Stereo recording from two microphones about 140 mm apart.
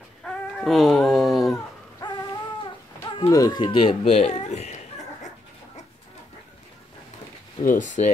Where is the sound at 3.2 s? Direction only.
25° left (ahead or behind); by 4.7 s 55° left (ahead or behind).